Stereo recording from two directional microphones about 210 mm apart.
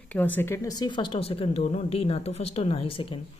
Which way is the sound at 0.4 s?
15° left (ahead or behind).